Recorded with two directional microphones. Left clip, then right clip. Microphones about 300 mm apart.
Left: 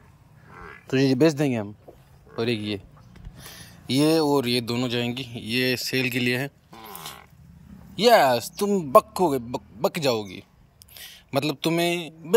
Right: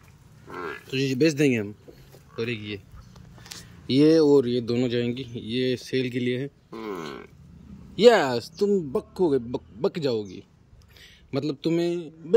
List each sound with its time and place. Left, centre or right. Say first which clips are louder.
0.8 s speech: left 4 dB; centre
3.8 s speech: right 3 dB; centre
6.7 s a sound: right 6 dB; right
7.9 s speech: left 1 dB; centre